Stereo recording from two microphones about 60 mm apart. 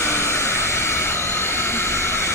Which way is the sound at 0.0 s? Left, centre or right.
Left.